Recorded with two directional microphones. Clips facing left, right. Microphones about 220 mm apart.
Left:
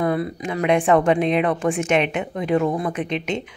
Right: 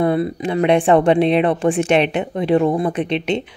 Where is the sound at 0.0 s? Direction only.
30° right (ahead or behind).